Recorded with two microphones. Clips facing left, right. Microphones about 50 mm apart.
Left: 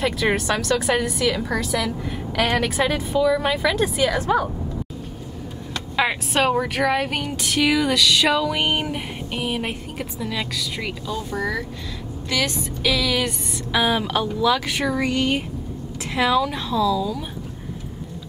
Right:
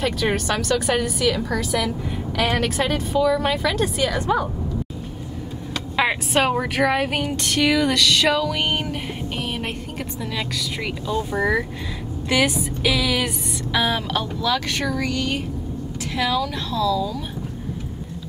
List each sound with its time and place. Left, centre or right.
0.0 s a woman's voice: centre
5.9 s a woman's voice: centre
11.1 s music: centre
12.3 s a woman's voice: right
12.5 s music: centre
13.7 s speech: centre
15.0 s speech: left; by 17.2 s centre